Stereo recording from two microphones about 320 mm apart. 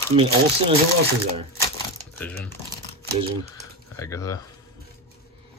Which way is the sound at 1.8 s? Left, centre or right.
Centre.